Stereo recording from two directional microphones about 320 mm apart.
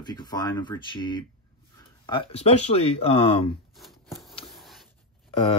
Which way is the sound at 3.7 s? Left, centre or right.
Centre.